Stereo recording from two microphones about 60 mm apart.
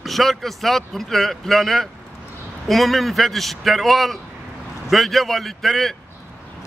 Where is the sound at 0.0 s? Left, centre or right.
Centre.